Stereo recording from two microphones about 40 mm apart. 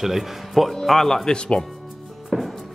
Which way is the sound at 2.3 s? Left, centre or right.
Centre.